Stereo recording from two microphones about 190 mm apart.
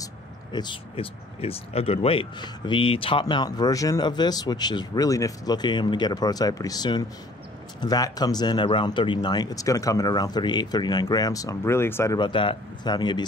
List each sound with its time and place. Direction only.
0.0 s speech: 25° left (ahead or behind)